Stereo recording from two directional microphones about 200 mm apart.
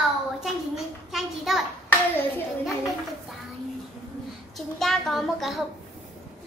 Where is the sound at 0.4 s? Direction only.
Centre (ahead or behind).